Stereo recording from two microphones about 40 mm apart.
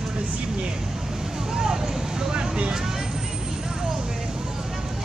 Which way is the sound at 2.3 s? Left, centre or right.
Right.